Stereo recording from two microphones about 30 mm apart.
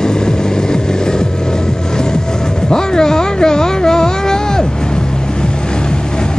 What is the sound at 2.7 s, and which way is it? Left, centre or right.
Music, left.